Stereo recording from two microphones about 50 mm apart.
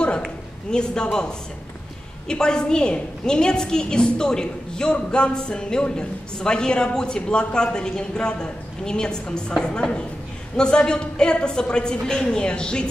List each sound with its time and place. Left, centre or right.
0.7 s a woman's voice: centre
2.2 s a woman's voice: centre